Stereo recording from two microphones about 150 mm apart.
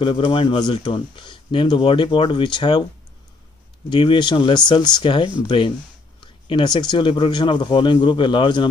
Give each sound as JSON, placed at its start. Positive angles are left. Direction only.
{"t": 0.0, "sound": "speech", "side_deg": 35}
{"t": 3.9, "sound": "speech", "side_deg": 30}